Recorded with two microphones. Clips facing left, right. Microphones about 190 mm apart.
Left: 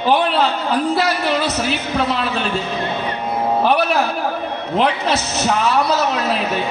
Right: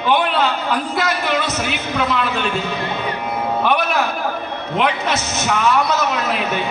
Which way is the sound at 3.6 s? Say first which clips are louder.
Left 2 dB; 35° left (ahead or behind).